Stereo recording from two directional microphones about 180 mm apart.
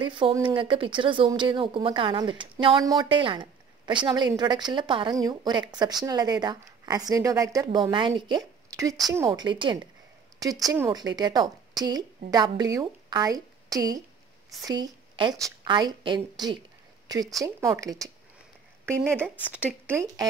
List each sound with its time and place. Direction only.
0.0 s a woman's voice: 25° right (ahead or behind)
19.0 s speech: 10° right (ahead or behind)